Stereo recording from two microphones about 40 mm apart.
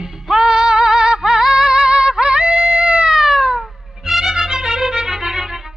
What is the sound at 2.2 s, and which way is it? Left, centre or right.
Yodeling, right.